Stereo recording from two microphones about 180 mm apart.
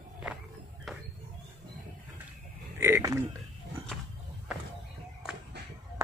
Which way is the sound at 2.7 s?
15° right (ahead or behind).